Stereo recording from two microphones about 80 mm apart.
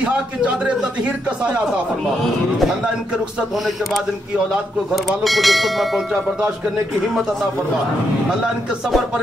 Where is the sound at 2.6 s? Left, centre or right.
Centre.